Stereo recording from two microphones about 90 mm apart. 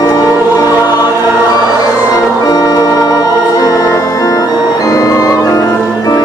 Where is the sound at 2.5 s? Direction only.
45° left (ahead or behind).